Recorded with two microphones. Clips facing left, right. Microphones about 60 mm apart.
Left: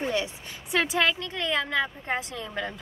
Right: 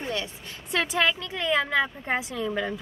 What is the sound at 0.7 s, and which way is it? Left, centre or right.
Speech, centre.